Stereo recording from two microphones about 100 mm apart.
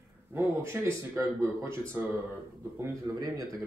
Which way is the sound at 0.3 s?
25° right (ahead or behind).